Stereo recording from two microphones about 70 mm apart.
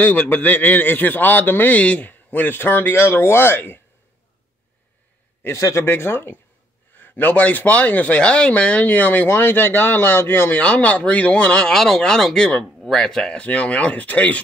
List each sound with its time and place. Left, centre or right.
0.0 s a man's voice: left
5.6 s speech: left
5.9 s a man's voice: left
10.6 s a man's voice: centre
11.7 s speech: centre
13.4 s a man's voice: centre